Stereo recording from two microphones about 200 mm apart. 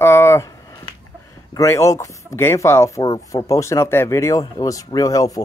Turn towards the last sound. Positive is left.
turn(degrees=20)  # may be behind; listen again after turning